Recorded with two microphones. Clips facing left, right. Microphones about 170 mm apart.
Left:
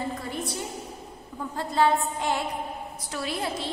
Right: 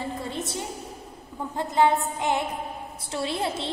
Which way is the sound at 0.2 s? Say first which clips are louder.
Right 1 dB; 25° right (ahead or behind).